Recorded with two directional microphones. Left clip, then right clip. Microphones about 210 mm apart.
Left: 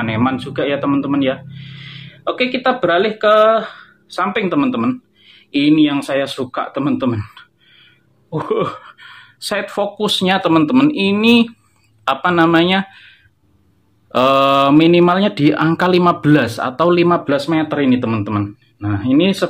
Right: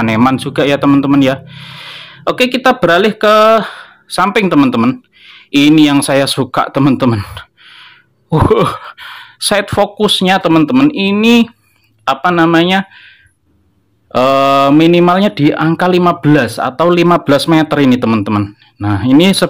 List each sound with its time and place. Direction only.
0.0 s speech: 55° right (ahead or behind); by 13.1 s 25° right (ahead or behind)
14.1 s speech: 25° right (ahead or behind); by 19.5 s 50° right (ahead or behind)